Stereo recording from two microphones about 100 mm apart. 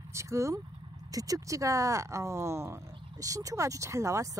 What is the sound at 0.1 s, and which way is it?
A woman's voice, 30° right (ahead or behind).